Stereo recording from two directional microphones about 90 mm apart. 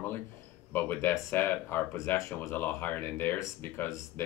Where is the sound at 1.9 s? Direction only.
35° left (ahead or behind).